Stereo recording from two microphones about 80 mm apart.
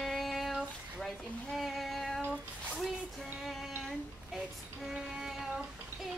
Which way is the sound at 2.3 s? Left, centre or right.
Centre.